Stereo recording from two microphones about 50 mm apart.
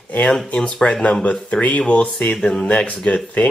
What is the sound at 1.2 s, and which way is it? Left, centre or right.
Speech, left.